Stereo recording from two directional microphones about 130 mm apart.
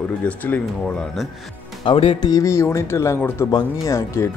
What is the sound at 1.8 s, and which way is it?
Speech, 40° left (ahead or behind).